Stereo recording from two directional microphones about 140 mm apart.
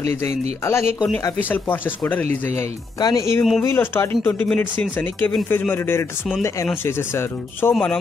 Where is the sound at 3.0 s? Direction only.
25° left (ahead or behind).